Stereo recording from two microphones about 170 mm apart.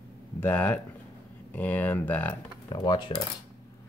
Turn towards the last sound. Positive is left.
turn(degrees=30)  # may be behind; listen again after turning